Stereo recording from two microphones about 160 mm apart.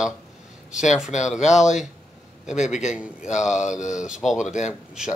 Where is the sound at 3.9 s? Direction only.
5° right (ahead or behind).